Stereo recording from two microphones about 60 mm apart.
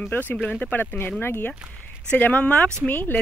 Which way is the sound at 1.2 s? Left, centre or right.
Left.